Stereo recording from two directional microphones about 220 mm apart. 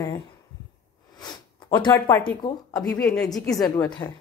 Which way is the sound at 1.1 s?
20° left (ahead or behind).